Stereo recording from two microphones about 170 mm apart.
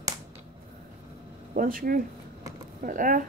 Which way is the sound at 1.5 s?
55° right (ahead or behind).